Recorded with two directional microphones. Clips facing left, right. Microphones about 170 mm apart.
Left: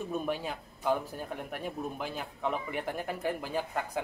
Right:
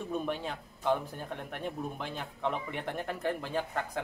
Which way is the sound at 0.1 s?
5° left (ahead or behind).